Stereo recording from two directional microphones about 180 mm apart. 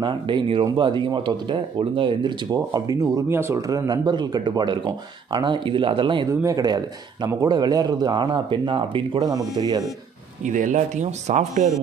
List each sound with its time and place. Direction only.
0.0 s speech: 25° right (ahead or behind)
10.4 s speech: 45° right (ahead or behind)